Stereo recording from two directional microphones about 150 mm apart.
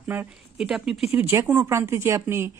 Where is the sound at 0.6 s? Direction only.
5° right (ahead or behind).